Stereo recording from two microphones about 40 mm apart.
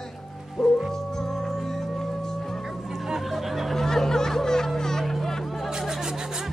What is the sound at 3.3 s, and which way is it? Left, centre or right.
Music, centre.